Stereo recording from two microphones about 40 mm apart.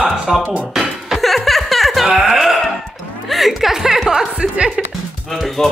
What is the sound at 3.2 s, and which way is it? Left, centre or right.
A woman's voice, centre.